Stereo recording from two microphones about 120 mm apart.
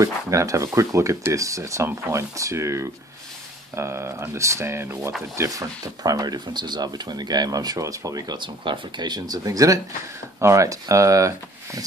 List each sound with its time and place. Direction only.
0.0 s speech: 25° right (ahead or behind)